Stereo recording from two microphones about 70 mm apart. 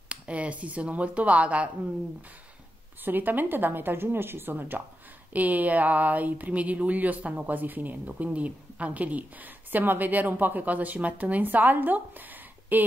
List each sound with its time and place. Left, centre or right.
0.1 s speech: centre
3.1 s speech: right